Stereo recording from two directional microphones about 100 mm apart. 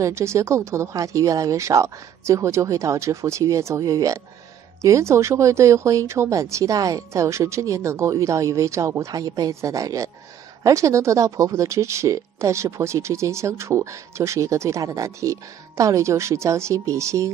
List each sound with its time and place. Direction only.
0.0 s speech: 30° right (ahead or behind)